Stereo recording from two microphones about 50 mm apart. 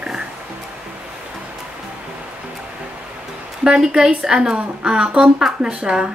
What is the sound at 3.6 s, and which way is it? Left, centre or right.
Speech, centre.